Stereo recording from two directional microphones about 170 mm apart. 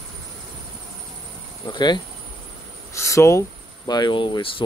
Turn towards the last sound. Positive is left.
turn(degrees=30)  # may be behind; listen again after turning